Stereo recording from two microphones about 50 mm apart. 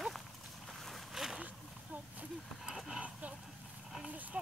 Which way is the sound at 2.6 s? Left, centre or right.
Centre.